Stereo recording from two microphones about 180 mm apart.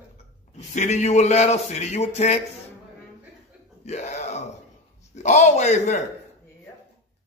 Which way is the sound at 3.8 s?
40° left (ahead or behind).